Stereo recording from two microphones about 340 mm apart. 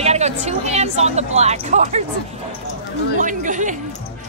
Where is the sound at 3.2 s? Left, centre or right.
Right.